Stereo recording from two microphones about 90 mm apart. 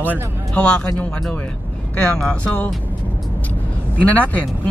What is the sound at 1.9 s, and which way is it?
Speech, 10° left (ahead or behind).